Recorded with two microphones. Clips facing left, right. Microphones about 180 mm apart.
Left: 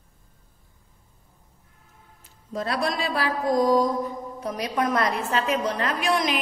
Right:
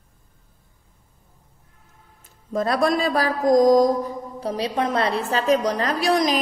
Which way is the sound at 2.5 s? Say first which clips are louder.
Right 6 dB; 45° right (ahead or behind).